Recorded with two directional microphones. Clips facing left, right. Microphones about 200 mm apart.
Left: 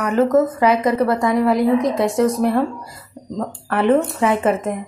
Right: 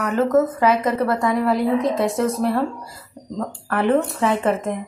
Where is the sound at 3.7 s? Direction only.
25° left (ahead or behind).